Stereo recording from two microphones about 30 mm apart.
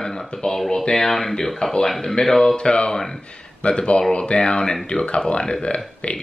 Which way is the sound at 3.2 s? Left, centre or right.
Left.